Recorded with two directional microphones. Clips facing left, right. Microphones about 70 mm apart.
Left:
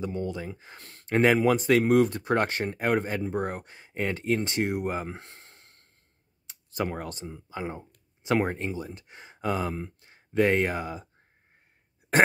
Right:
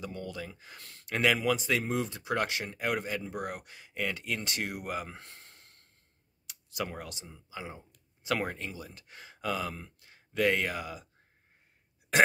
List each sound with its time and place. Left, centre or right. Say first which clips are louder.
0.0 s speech: left 7 dB; left
8.2 s speech: left 6 dB; left